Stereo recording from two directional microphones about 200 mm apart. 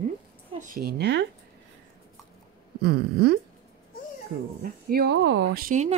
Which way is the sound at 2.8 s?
50° right (ahead or behind).